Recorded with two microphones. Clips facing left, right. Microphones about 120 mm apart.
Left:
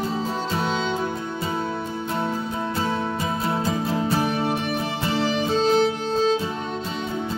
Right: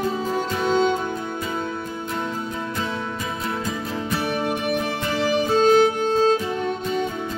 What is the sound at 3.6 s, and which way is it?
Music, 30° left (ahead or behind).